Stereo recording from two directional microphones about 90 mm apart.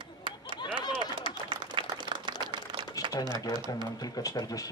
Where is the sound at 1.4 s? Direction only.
60° right (ahead or behind).